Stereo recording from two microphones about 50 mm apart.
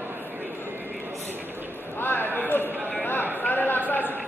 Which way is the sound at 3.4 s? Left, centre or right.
Left.